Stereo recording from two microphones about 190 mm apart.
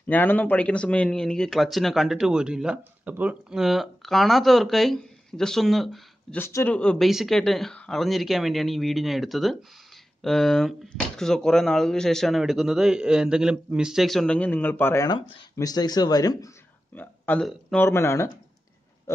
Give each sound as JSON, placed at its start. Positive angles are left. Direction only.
{"t": 0.0, "sound": "speech", "side_deg": 10}
{"t": 6.4, "sound": "speech", "side_deg": 10}